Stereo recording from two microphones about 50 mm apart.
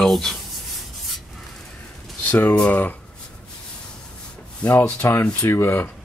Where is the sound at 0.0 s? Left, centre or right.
Centre.